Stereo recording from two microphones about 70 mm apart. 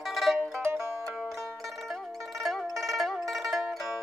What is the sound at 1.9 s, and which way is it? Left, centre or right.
Music, centre.